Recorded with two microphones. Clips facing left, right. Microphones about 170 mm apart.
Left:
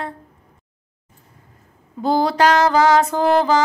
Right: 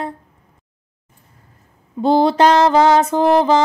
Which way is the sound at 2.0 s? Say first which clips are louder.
Right 4 dB; 25° right (ahead or behind).